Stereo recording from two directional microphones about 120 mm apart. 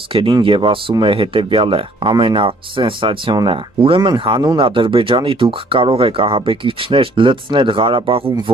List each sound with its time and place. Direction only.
0.1 s speech: 45° right (ahead or behind)